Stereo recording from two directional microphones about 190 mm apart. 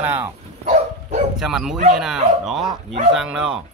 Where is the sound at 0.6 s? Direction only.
40° right (ahead or behind).